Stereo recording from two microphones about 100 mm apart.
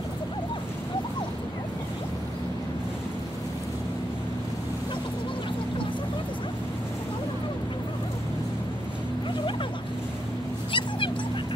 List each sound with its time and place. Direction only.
10.7 s dog: 55° left (ahead or behind)